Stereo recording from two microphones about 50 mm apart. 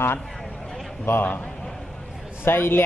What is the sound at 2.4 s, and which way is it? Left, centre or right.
Speech, left.